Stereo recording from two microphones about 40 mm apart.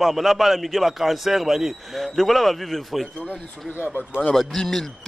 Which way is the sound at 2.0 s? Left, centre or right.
Centre.